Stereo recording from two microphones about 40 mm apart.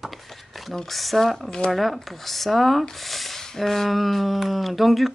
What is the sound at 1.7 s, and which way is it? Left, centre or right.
Speech, centre.